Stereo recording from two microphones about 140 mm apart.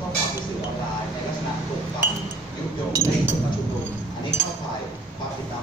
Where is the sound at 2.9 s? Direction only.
20° right (ahead or behind).